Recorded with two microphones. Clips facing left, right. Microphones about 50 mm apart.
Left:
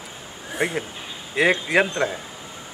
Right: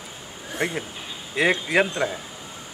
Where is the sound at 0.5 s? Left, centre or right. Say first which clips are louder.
Left 2 dB; centre.